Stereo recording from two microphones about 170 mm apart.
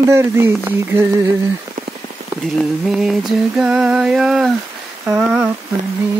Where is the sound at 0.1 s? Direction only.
15° right (ahead or behind).